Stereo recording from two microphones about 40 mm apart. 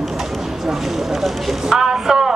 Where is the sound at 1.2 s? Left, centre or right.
Centre.